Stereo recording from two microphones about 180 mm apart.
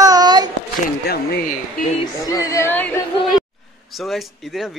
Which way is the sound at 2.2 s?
20° left (ahead or behind).